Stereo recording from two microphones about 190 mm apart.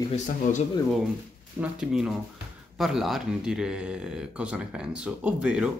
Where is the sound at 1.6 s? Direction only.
5° right (ahead or behind).